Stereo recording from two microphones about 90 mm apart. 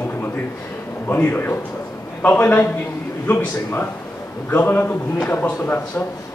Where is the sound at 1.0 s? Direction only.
20° left (ahead or behind).